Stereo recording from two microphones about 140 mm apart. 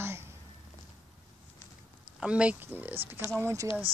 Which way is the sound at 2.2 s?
10° right (ahead or behind).